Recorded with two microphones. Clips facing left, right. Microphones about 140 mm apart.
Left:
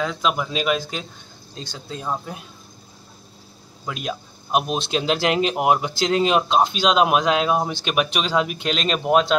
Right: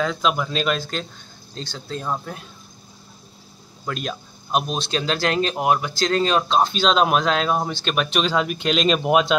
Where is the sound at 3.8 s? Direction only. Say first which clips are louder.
Even; 10° left (ahead or behind); by 9.3 s 5° right (ahead or behind).